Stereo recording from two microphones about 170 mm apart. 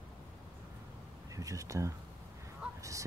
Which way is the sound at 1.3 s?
20° right (ahead or behind).